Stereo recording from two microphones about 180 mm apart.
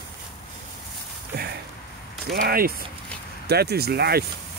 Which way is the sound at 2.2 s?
55° right (ahead or behind).